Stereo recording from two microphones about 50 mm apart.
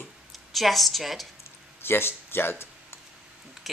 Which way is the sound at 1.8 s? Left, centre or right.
Left.